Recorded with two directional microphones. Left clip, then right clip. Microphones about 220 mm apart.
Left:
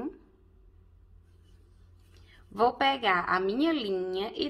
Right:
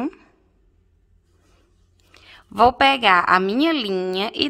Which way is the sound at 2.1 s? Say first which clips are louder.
Right 11 dB; 40° right (ahead or behind).